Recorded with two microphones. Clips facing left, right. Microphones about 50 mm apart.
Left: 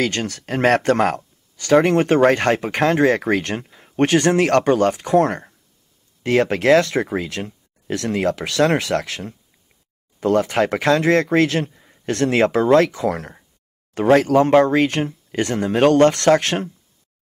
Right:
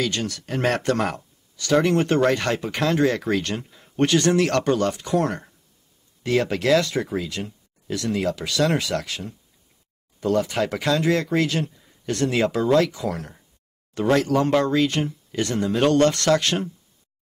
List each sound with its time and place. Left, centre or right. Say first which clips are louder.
0.0 s speech: left 4 dB; left